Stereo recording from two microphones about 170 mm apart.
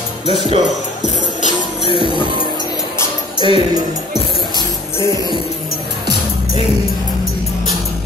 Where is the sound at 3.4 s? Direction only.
30° right (ahead or behind).